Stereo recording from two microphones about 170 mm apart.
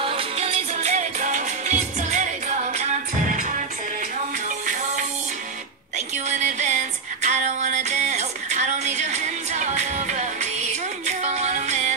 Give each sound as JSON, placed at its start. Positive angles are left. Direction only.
{"t": 0.0, "sound": "music", "side_deg": -35}
{"t": 6.1, "sound": "music", "side_deg": -45}